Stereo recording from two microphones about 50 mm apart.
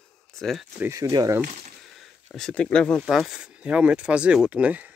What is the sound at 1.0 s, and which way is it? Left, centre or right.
Speech, right.